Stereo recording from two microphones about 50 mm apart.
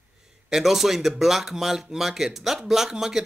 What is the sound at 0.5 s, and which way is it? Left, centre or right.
Speech, centre.